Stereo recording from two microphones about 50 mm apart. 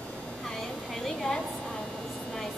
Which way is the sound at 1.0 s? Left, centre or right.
Centre.